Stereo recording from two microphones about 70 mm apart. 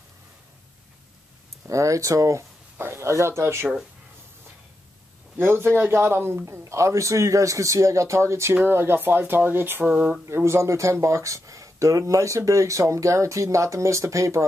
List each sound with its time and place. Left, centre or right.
1.7 s speech: right
2.8 s speech: right
5.4 s speech: right